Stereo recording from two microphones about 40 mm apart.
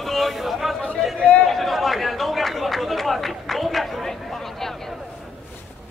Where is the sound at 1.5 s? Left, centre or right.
Centre.